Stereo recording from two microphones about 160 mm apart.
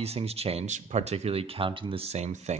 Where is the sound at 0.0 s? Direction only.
40° right (ahead or behind).